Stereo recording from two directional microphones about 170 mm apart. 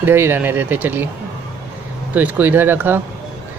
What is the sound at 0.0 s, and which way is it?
Speech, 15° right (ahead or behind).